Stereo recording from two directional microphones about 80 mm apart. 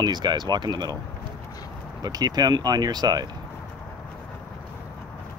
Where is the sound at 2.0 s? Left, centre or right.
Right.